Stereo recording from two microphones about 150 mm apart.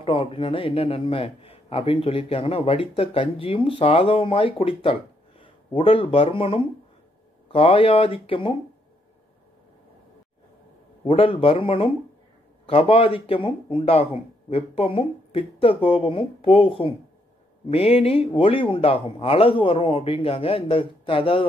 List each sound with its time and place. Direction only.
0.0 s a man's voice: 35° left (ahead or behind)
11.1 s a man's voice: 35° left (ahead or behind)